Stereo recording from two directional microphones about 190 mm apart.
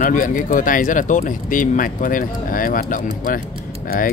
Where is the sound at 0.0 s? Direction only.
45° left (ahead or behind).